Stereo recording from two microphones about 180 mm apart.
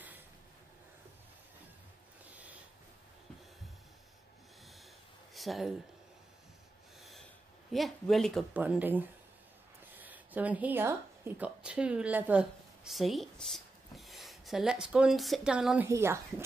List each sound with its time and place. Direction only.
5.3 s speech: centre (ahead or behind)
7.0 s snort: centre (ahead or behind)
7.7 s a woman's voice: centre (ahead or behind)